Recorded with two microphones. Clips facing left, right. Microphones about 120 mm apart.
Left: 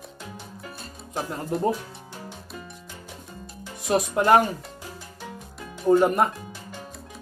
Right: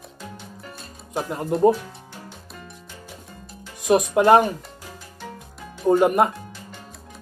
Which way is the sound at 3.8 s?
20° right (ahead or behind).